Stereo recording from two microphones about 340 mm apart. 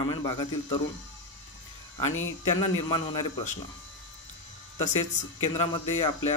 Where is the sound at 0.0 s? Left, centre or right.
Centre.